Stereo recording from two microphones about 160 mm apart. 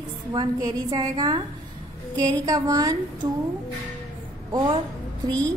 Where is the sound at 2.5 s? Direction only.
20° right (ahead or behind).